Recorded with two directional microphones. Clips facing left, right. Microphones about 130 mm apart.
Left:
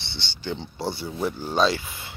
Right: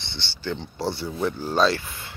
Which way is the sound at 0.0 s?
Centre (ahead or behind).